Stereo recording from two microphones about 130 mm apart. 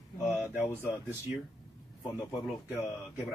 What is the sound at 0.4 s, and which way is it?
Speech, 15° right (ahead or behind).